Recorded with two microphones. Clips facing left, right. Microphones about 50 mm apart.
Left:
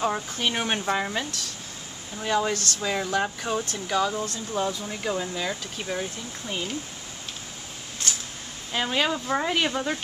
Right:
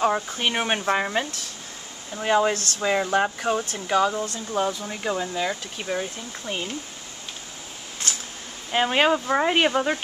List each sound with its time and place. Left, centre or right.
0.0 s speech: right
2.2 s speech: right
8.7 s speech: right